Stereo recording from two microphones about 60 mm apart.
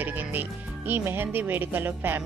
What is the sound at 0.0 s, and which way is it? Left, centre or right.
Speech, right.